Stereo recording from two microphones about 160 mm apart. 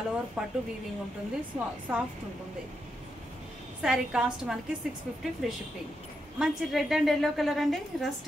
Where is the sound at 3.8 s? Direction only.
5° right (ahead or behind).